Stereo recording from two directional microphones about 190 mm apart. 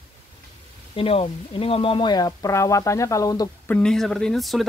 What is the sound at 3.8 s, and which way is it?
Speech, centre (ahead or behind).